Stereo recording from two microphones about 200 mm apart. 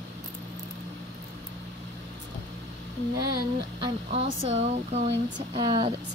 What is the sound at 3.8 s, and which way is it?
Speech, 30° right (ahead or behind).